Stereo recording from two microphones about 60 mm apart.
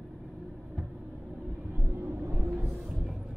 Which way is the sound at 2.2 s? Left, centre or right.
Right.